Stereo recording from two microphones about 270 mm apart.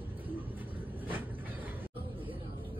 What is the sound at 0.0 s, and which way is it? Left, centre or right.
Vehicle, centre.